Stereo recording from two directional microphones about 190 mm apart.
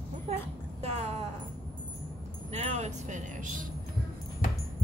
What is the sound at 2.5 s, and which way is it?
Speech, 35° right (ahead or behind).